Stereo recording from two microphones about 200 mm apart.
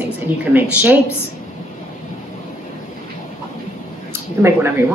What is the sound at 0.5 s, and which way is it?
Speech, 10° right (ahead or behind).